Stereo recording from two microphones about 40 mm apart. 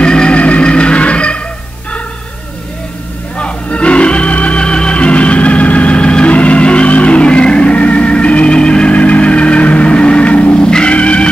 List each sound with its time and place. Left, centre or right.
0.0 s vehicle: left
0.4 s music: left
3.3 s organ: left